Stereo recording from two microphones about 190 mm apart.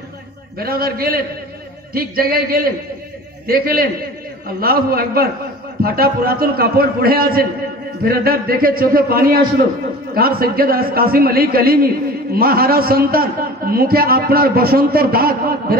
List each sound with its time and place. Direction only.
0.6 s a man's voice: 50° right (ahead or behind)